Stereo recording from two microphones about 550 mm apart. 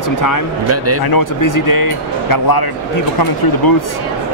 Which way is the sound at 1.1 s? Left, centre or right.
Left.